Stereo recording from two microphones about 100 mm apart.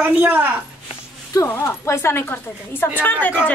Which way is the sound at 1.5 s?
25° left (ahead or behind).